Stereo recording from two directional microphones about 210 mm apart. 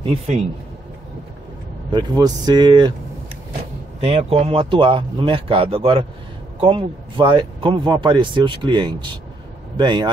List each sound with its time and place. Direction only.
0.0 s speech: 30° right (ahead or behind)
1.9 s speech: 20° right (ahead or behind)
4.0 s speech: 30° right (ahead or behind)